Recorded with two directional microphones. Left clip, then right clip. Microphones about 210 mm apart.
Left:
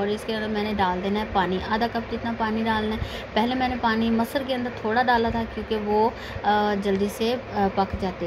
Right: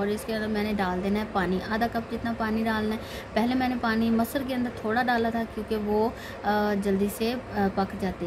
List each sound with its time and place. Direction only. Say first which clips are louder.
0.0 s a woman's voice: left 3 dB; 20° right (ahead or behind)